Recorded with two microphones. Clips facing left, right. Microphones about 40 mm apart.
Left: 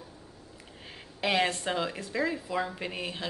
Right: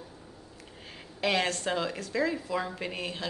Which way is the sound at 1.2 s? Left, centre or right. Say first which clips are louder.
Left 1 dB; centre.